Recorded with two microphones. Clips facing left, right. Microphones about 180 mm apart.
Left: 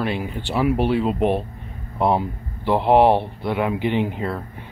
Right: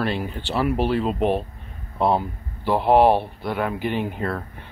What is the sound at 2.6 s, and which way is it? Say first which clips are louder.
Speech: left 1 dB; 20° left (ahead or behind).